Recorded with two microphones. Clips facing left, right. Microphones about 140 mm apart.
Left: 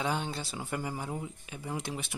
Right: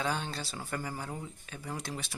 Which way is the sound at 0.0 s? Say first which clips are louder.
Left 1 dB; 20° left (ahead or behind).